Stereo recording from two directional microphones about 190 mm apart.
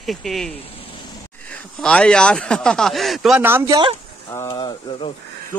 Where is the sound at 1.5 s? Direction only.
5° left (ahead or behind); by 3.8 s 15° right (ahead or behind).